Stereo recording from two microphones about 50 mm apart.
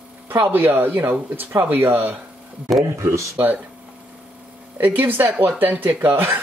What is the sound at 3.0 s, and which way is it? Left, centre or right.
Speech, right.